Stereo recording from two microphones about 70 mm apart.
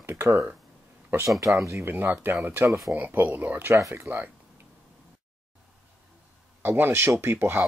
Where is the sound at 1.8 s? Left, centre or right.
Right.